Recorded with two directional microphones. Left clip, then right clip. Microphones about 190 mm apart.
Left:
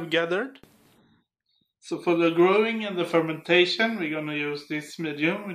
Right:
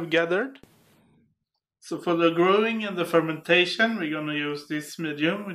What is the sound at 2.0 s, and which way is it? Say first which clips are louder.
Speech: even; 25° right (ahead or behind).